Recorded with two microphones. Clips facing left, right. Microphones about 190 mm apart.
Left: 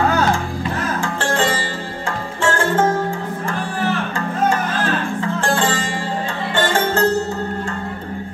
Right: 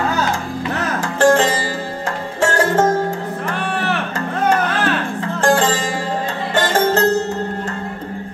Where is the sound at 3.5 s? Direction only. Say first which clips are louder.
Even; 70° right (ahead or behind).